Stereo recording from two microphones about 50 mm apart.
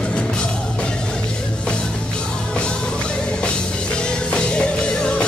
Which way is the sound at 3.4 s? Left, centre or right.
Left.